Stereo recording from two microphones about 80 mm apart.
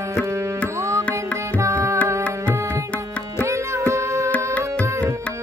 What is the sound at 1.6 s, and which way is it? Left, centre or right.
Tabla, right.